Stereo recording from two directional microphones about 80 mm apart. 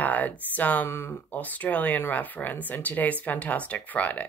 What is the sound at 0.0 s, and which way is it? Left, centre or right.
Speech, centre.